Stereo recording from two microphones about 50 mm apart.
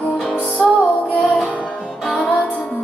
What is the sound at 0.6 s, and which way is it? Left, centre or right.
Music, centre.